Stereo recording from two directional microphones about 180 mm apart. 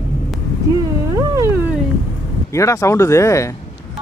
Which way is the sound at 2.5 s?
15° left (ahead or behind).